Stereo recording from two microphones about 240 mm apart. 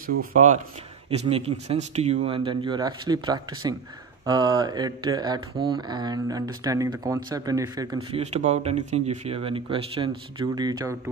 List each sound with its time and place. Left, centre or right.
0.0 s speech: right; by 8.2 s centre
8.2 s speech: right